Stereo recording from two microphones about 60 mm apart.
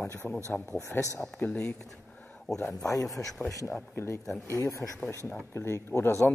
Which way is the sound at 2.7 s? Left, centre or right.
Left.